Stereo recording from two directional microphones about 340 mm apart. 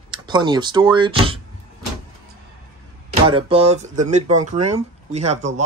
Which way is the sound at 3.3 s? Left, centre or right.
Centre.